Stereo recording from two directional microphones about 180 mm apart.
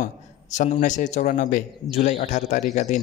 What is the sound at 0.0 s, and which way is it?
A man's voice, 45° left (ahead or behind).